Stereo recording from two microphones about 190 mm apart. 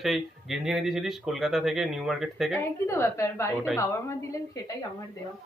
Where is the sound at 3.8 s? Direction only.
15° left (ahead or behind).